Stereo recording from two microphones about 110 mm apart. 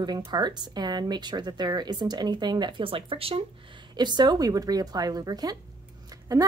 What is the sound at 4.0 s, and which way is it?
A woman's voice, 40° right (ahead or behind).